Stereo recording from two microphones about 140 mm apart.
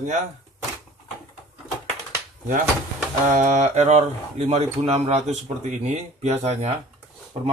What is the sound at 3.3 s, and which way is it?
Speech, 60° right (ahead or behind).